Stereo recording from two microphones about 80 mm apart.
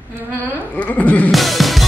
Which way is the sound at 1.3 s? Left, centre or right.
Centre.